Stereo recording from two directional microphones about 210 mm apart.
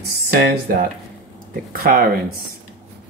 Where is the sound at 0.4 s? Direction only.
45° right (ahead or behind).